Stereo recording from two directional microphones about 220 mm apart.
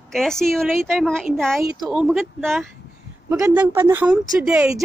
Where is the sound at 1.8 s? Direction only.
Centre (ahead or behind).